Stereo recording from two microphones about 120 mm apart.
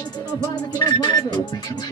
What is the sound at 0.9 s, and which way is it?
Speech, 35° left (ahead or behind).